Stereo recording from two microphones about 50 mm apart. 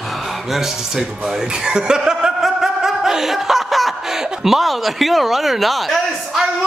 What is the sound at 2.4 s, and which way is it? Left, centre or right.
Chuckle, centre.